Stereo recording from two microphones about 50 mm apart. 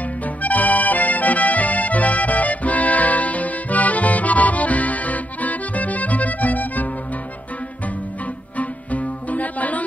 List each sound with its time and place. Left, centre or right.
0.2 s music: left
8.5 s music: left